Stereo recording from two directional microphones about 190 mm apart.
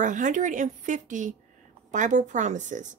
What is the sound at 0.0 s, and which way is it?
Speech, 40° right (ahead or behind).